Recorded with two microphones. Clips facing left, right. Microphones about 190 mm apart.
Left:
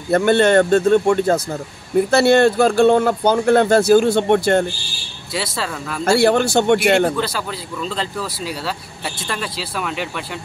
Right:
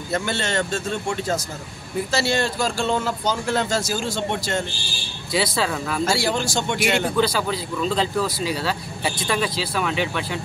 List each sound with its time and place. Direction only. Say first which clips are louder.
0.1 s speech: left 12 dB; 55° left (ahead or behind)
5.3 s speech: right 2 dB; centre (ahead or behind)
6.0 s speech: left 11 dB; 60° left (ahead or behind)
7.2 s speech: right 2 dB; centre (ahead or behind)